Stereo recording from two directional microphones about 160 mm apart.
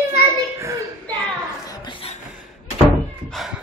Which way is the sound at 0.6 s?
20° right (ahead or behind).